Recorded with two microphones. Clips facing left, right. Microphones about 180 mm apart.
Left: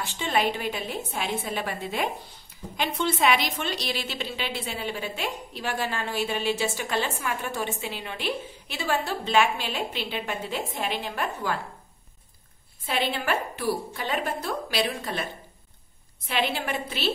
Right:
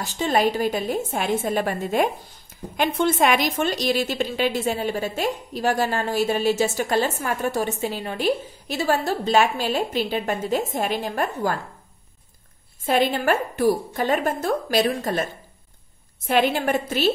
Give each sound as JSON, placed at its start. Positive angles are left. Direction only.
{"t": 0.0, "sound": "a woman's voice", "side_deg": -40}
{"t": 12.8, "sound": "a woman's voice", "side_deg": -45}
{"t": 16.3, "sound": "a woman's voice", "side_deg": -45}